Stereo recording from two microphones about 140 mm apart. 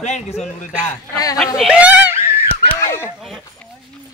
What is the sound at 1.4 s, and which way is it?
Speech, 5° right (ahead or behind).